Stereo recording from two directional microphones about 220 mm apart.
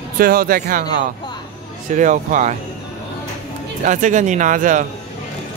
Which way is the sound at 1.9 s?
35° right (ahead or behind).